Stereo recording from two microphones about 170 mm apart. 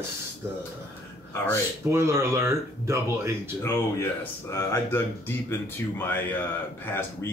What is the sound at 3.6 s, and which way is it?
Speech, 15° left (ahead or behind).